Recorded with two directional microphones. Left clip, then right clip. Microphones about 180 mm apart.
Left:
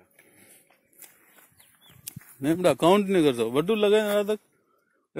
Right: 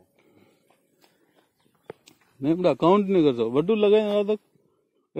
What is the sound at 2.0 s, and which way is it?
A man's voice, centre (ahead or behind).